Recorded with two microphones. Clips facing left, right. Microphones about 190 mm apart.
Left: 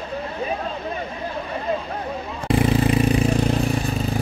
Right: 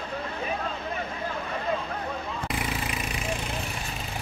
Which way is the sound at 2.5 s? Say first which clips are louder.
Left 17 dB; 30° left (ahead or behind).